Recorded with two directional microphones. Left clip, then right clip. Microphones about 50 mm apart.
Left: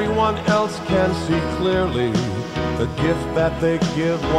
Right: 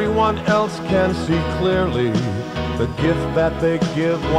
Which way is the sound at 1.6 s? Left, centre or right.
Right.